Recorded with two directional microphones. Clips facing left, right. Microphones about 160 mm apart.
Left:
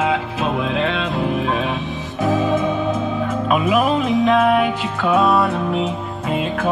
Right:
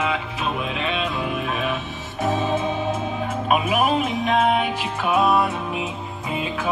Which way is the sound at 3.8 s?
85° left.